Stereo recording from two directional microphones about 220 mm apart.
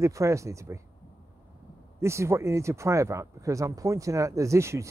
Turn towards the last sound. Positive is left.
turn(degrees=-15)  # may be behind; listen again after turning